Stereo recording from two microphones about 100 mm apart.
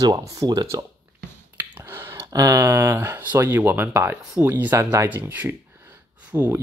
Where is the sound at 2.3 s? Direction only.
35° right (ahead or behind).